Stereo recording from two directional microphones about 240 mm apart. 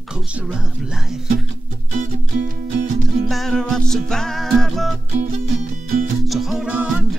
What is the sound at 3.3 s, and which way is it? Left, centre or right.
Music, centre.